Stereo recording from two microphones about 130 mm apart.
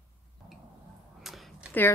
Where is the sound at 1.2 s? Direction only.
Centre (ahead or behind).